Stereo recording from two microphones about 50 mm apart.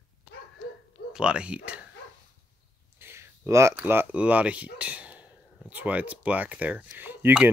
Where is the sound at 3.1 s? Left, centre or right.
Right.